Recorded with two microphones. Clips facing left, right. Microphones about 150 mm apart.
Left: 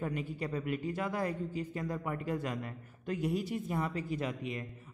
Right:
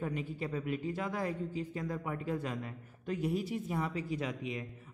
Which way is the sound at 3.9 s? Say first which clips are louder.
Even; 55° left (ahead or behind).